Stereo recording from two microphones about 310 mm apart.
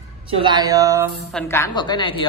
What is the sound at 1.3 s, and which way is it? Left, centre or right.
A woman's voice, centre.